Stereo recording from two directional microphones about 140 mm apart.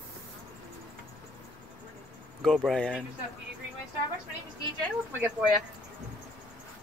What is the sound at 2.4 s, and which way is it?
Speech, centre (ahead or behind).